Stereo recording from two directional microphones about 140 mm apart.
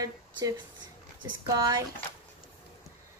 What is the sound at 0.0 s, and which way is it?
A woman's voice, 25° right (ahead or behind).